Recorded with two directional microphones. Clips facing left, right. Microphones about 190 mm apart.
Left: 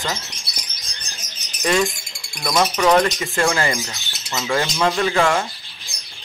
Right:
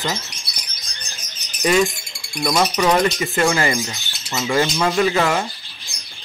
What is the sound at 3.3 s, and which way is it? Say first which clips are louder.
Speech: right 2 dB; 5° right (ahead or behind).